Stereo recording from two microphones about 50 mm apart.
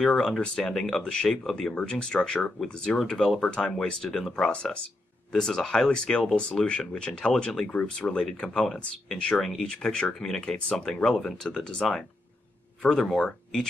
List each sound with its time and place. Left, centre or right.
0.0 s speech: centre
3.3 s speech: centre
6.5 s speech: centre